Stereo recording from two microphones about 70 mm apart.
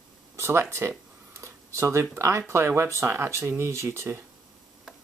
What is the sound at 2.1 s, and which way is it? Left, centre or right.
Speech, right.